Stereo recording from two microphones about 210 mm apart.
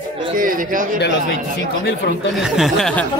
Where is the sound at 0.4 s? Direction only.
40° right (ahead or behind).